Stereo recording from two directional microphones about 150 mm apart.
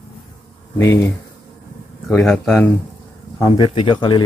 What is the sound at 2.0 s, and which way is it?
Speech, 5° left (ahead or behind).